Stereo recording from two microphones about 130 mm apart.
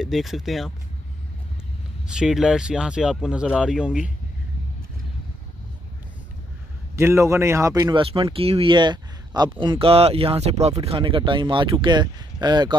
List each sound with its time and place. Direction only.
0.0 s speech: centre (ahead or behind)
2.0 s speech: 5° right (ahead or behind)
7.0 s speech: 20° right (ahead or behind)
7.9 s speech: 45° right (ahead or behind)